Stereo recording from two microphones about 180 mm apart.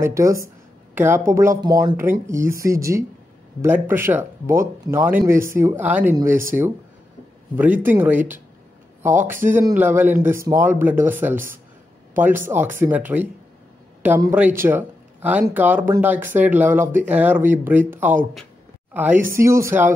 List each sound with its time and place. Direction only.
0.0 s speech: 15° right (ahead or behind)